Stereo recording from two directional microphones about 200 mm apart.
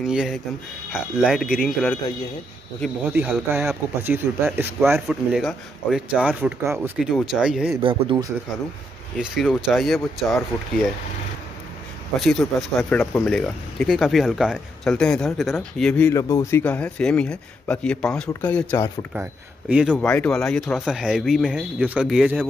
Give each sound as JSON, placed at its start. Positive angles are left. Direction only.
{"t": 0.0, "sound": "speech", "side_deg": 0}
{"t": 3.1, "sound": "speech", "side_deg": -5}
{"t": 5.0, "sound": "speech", "side_deg": 0}
{"t": 7.8, "sound": "speech", "side_deg": -25}
{"t": 9.2, "sound": "speech", "side_deg": 0}
{"t": 12.2, "sound": "speech", "side_deg": 0}
{"t": 19.7, "sound": "speech", "side_deg": -5}
{"t": 20.0, "sound": "speech", "side_deg": 5}